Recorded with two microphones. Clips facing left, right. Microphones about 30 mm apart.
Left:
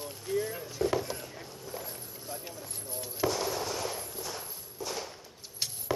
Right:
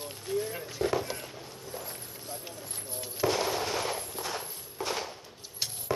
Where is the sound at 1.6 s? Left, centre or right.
Centre.